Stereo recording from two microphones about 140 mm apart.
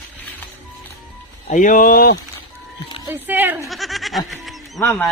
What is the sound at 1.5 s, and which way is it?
Speech, 70° left (ahead or behind).